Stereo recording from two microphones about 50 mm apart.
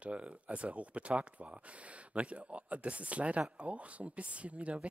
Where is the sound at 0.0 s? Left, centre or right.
Right.